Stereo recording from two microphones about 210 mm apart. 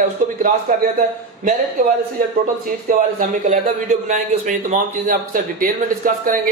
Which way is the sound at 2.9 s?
40° right (ahead or behind).